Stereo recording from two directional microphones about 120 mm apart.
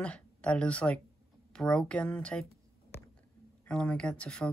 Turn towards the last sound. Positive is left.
turn(degrees=10)  # may be behind; listen again after turning